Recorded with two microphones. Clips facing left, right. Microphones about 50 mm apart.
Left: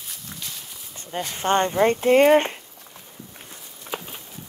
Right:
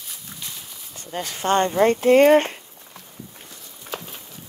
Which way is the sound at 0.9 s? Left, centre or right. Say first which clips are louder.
Even; left.